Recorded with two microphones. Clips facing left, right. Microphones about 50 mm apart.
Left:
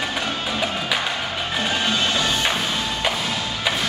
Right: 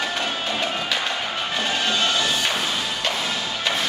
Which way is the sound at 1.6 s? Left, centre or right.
Centre.